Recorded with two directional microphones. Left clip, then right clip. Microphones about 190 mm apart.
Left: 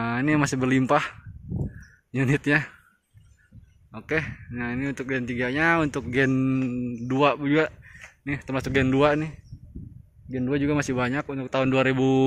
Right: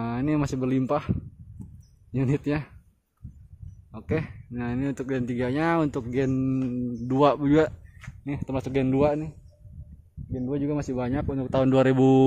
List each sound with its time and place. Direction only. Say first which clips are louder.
0.0 s speech: left 4 dB; 5° right (ahead or behind)
2.1 s speech: left 5 dB; centre (ahead or behind)
3.9 s speech: left 3 dB; 5° right (ahead or behind)
6.1 s speech: left 5 dB; centre (ahead or behind)
7.2 s speech: right 1 dB; 25° right (ahead or behind)
8.2 s speech: left 2 dB; 5° right (ahead or behind)
10.3 s speech: left 4 dB; 10° left (ahead or behind)
11.1 s speech: even; 10° right (ahead or behind)